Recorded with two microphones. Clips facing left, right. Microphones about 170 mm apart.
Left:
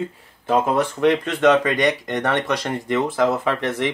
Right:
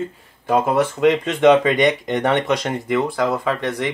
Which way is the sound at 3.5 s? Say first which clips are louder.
Even; centre (ahead or behind).